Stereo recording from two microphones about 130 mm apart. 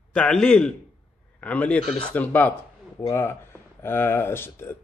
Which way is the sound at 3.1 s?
20° left (ahead or behind).